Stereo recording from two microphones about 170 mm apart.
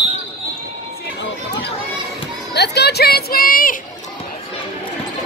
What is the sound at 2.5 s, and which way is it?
Speech, 80° left.